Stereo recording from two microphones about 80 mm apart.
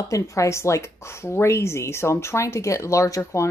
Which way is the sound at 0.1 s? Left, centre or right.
Left.